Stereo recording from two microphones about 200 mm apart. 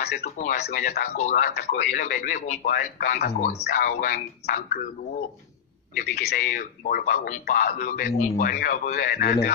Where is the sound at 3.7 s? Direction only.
45° left (ahead or behind).